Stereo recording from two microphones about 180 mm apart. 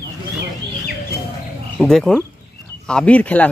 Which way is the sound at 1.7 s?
Centre (ahead or behind).